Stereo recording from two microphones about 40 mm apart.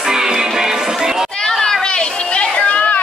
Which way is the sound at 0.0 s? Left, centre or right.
Centre.